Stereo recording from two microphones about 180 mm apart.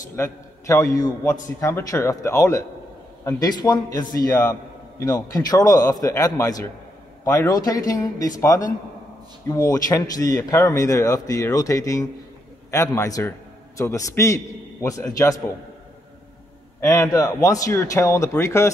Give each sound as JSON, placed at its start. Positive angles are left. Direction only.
{"t": 0.1, "sound": "a man's voice", "side_deg": 15}
{"t": 16.8, "sound": "a man's voice", "side_deg": 15}